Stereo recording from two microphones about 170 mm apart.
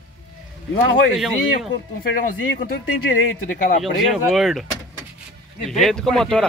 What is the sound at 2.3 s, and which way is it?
Speech, 75° left (ahead or behind).